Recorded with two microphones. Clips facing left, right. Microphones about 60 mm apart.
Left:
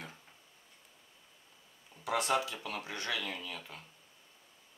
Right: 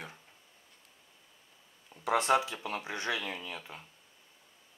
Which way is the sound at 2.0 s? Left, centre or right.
Right.